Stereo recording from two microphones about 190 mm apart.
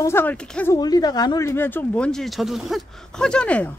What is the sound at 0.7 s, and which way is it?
Speech, 20° left (ahead or behind).